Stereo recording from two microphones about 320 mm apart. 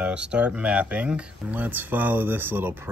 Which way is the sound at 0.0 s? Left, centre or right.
Centre.